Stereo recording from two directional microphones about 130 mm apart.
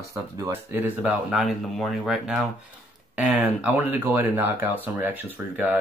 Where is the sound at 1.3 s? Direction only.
Centre (ahead or behind).